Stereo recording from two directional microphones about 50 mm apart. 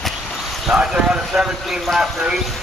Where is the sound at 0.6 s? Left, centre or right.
Centre.